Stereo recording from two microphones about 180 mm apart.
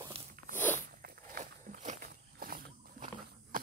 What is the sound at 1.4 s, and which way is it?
Walk, 40° right (ahead or behind).